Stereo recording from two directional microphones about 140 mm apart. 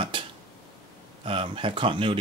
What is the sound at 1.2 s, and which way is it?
Speech, 40° right (ahead or behind).